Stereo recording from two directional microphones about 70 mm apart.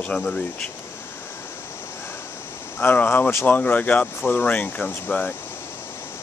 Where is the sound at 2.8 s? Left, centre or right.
Left.